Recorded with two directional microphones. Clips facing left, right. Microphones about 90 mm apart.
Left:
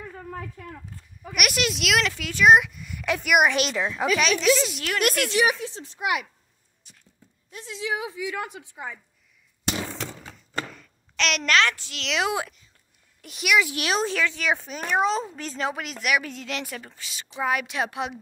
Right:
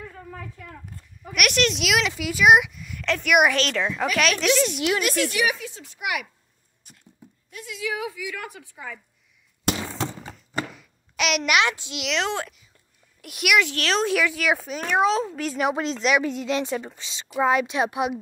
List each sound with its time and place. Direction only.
1.3 s speech: 5° left (ahead or behind)
5.0 s a woman's voice: 60° left (ahead or behind)
5.5 s a child's voice: 35° left (ahead or behind)
7.5 s a woman's voice: 30° left (ahead or behind)
10.2 s a sound: 10° right (ahead or behind)
11.5 s a child's voice: 15° right (ahead or behind)
12.1 s speech: 10° left (ahead or behind)
13.2 s speech: 5° right (ahead or behind)
13.7 s speech: 10° left (ahead or behind)
14.0 s a child's voice: 10° right (ahead or behind)
15.7 s a woman's voice: 25° right (ahead or behind)